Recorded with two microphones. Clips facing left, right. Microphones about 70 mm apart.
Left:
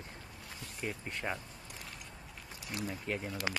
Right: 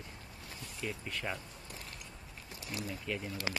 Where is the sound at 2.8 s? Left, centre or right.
Left.